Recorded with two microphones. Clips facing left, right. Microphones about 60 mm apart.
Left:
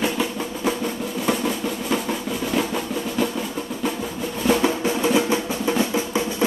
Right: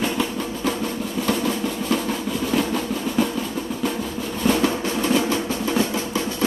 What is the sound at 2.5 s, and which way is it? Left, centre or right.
Drum, centre.